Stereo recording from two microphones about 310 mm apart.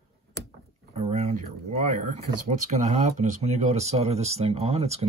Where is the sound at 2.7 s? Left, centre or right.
Right.